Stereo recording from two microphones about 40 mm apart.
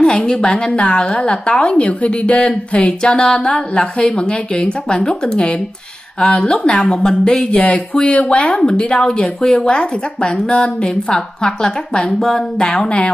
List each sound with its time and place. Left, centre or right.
0.0 s a woman's voice: left
9.2 s a woman's voice: centre